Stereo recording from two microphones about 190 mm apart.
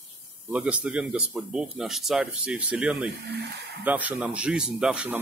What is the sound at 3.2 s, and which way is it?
Speech, 60° right (ahead or behind).